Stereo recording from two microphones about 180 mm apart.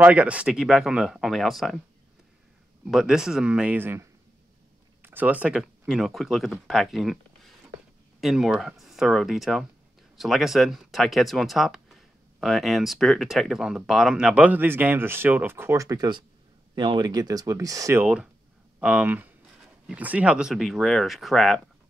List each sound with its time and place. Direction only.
0.0 s speech: 5° right (ahead or behind)
2.9 s speech: 5° right (ahead or behind)